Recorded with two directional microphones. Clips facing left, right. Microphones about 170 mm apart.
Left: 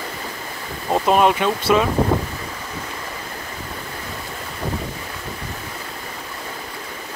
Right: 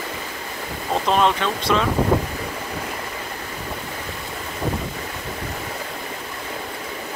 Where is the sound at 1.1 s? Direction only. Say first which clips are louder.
Left 3 dB; 10° left (ahead or behind).